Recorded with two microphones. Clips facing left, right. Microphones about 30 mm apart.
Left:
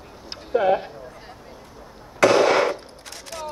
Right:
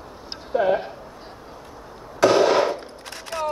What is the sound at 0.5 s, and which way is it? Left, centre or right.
Speech, centre.